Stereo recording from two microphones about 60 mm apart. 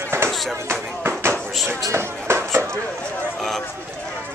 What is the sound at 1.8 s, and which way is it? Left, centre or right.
Speech, right.